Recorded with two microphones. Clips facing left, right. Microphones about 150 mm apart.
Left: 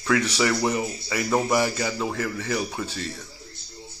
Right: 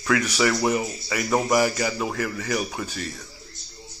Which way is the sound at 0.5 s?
15° right (ahead or behind).